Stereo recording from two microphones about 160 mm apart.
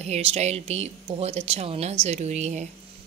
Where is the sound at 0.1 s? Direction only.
40° right (ahead or behind).